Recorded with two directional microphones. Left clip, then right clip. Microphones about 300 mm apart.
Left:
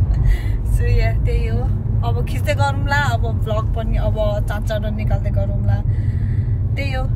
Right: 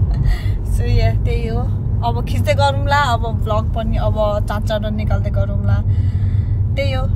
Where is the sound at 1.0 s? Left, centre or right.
Centre.